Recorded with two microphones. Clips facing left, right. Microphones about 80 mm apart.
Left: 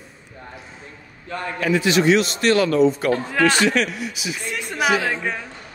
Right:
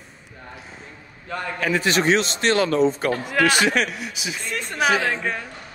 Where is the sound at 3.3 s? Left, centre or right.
Centre.